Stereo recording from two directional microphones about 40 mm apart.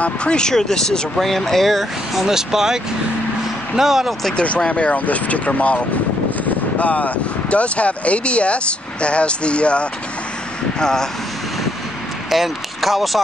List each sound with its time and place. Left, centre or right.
0.0 s speech: left; by 4.1 s centre
4.6 s speech: left
10.8 s speech: centre
12.3 s speech: centre